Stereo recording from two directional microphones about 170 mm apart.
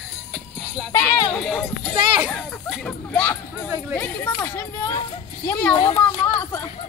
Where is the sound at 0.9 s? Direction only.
20° left (ahead or behind).